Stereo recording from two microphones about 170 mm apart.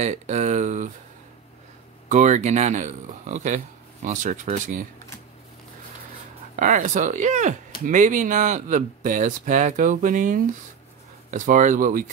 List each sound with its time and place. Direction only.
0.0 s speech: 40° right (ahead or behind)
2.0 s speech: 45° right (ahead or behind)
6.5 s speech: 45° right (ahead or behind)